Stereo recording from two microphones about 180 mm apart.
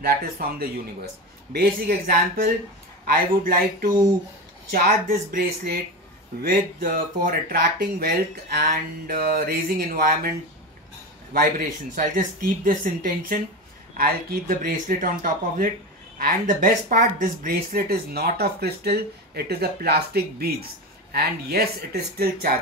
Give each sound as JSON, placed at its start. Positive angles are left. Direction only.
{"t": 0.0, "sound": "speech", "side_deg": -55}
{"t": 11.3, "sound": "speech", "side_deg": -50}